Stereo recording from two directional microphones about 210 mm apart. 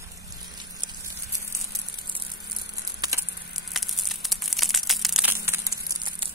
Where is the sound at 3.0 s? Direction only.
15° right (ahead or behind).